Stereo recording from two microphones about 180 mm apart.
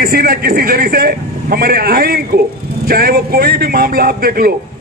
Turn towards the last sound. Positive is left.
turn(degrees=-55)  # may be behind; listen again after turning